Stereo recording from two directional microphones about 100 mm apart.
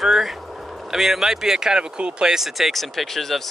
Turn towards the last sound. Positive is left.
turn(degrees=0)  # may be behind; listen again after turning